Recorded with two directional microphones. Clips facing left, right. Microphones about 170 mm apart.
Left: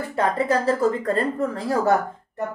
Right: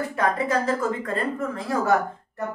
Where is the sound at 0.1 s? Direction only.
30° left (ahead or behind).